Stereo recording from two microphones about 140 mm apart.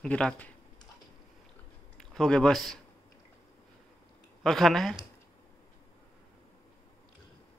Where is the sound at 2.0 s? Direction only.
5° left (ahead or behind).